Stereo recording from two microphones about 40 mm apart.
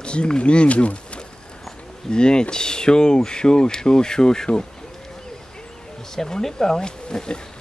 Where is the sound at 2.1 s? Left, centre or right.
Left.